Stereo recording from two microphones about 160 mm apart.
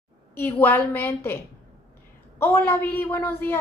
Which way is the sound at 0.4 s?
10° left (ahead or behind).